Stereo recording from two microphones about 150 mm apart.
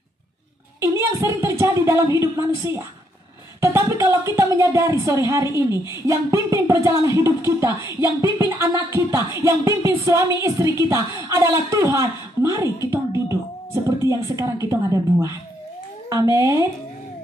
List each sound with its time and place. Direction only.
0.7 s a woman's voice: 20° right (ahead or behind)